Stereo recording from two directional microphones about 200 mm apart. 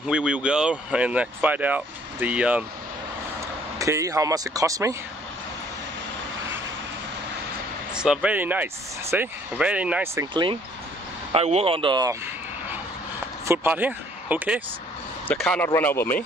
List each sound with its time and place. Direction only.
0.0 s speech: 5° right (ahead or behind)
3.7 s speech: 15° right (ahead or behind)
7.9 s speech: 5° right (ahead or behind)
10.3 s speech: 25° right (ahead or behind)
13.5 s speech: 10° right (ahead or behind)
15.2 s speech: 5° left (ahead or behind)